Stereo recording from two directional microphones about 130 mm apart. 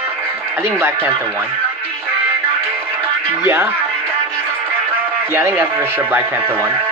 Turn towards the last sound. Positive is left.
turn(degrees=-15)  # may be behind; listen again after turning